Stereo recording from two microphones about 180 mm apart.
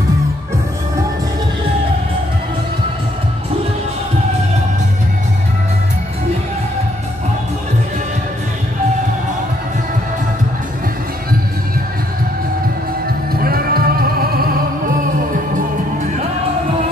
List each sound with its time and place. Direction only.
13.3 s music: 55° right (ahead or behind)